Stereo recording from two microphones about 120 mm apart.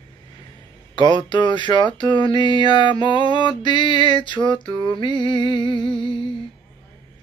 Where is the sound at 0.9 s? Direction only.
40° left (ahead or behind).